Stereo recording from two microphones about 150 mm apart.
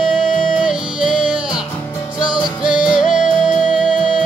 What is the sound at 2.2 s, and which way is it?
Music, 30° left (ahead or behind).